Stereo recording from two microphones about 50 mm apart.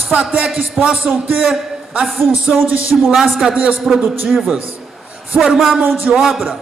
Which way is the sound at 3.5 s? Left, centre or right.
Right.